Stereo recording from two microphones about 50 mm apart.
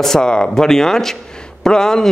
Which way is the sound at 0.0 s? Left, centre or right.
Centre.